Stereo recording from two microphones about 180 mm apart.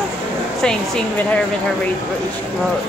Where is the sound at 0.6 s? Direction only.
5° left (ahead or behind).